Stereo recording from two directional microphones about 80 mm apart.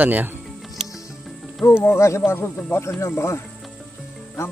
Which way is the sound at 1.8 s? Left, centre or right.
Left.